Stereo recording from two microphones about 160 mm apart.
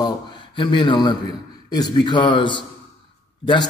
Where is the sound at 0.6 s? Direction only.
30° left (ahead or behind).